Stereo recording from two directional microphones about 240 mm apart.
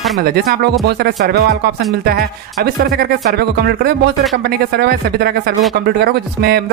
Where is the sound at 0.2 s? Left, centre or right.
Right.